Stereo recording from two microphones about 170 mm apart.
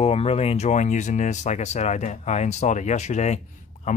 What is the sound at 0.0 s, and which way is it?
Speech, 35° left (ahead or behind).